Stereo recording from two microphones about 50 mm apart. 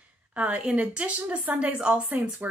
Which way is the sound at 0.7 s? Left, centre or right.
Right.